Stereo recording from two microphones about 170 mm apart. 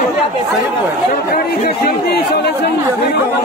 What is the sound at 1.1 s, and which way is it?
Speech, 65° left (ahead or behind).